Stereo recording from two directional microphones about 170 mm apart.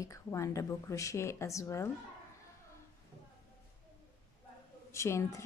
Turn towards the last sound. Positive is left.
turn(degrees=15)  # may be behind; listen again after turning